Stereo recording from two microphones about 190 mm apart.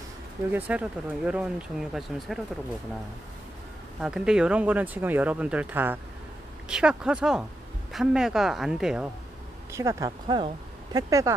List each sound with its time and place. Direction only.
0.5 s speech: 10° right (ahead or behind)
4.0 s speech: 5° right (ahead or behind)
9.7 s speech: 15° right (ahead or behind)